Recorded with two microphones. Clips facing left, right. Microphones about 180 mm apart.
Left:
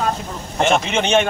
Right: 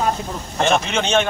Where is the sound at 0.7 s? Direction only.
10° left (ahead or behind).